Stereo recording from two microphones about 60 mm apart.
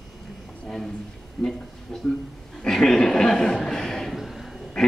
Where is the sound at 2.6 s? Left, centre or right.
Centre.